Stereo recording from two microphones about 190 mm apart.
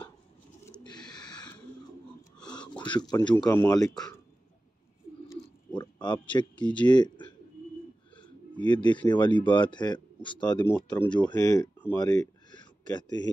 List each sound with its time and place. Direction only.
0.7 s bird: 20° left (ahead or behind)
2.6 s speech: 25° left (ahead or behind)
5.8 s a sound: 25° left (ahead or behind)
6.5 s speech: 5° left (ahead or behind)
6.9 s speech: 25° left (ahead or behind)
8.2 s bird: 25° left (ahead or behind)
9.1 s speech: 25° left (ahead or behind)
12.0 s a sound: 20° left (ahead or behind)